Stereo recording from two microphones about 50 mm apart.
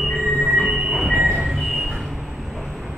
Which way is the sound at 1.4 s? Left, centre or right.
Centre.